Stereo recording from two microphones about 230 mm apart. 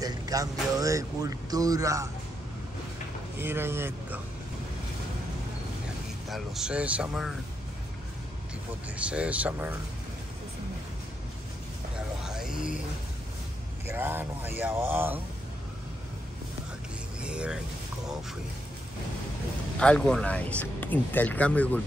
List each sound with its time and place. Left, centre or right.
0.0 s speech: centre
3.3 s speech: centre
6.2 s speech: centre
8.9 s speech: centre
12.2 s music: centre
13.8 s speech: centre
17.2 s speech: centre
19.8 s speech: centre